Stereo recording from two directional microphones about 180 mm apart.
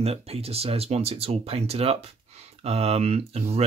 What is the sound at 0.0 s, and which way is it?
Speech, 35° right (ahead or behind).